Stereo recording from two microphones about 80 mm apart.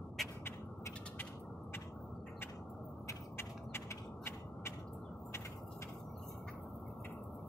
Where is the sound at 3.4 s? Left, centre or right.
Left.